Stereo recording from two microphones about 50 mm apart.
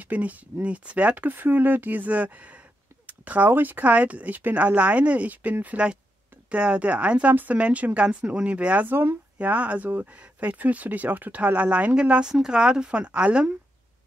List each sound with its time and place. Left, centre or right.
0.0 s speech: right
3.1 s a sound: right
3.4 s speech: right
8.8 s speech: right
9.4 s speech: right